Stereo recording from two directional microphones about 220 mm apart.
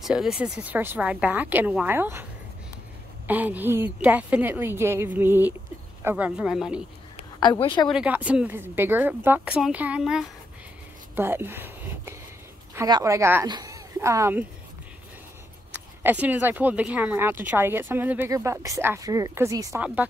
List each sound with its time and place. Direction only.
0.0 s speech: centre (ahead or behind)
3.3 s speech: 10° right (ahead or behind)
7.2 s speech: 20° left (ahead or behind)
7.9 s speech: 5° right (ahead or behind)
15.7 s speech: 5° right (ahead or behind)